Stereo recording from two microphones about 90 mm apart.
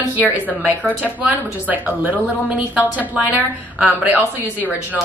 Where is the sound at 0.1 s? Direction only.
20° right (ahead or behind).